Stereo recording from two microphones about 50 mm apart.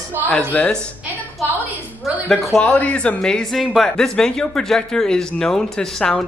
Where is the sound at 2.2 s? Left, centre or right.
Centre.